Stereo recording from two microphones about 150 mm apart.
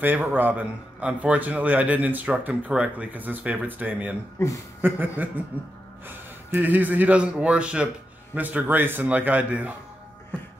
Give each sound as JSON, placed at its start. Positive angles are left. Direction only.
{"t": 0.0, "sound": "a man's voice", "side_deg": -10}
{"t": 4.4, "sound": "speech", "side_deg": 20}
{"t": 4.8, "sound": "a man's voice", "side_deg": -10}